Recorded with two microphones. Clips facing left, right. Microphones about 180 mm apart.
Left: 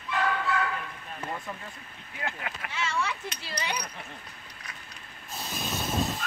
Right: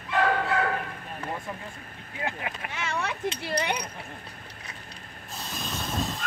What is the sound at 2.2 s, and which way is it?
Boat, 25° right (ahead or behind).